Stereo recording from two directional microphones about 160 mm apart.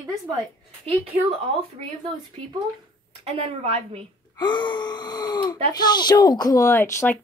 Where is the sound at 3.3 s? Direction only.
40° right (ahead or behind).